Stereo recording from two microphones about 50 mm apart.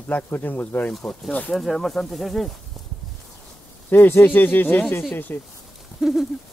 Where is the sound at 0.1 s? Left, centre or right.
Left.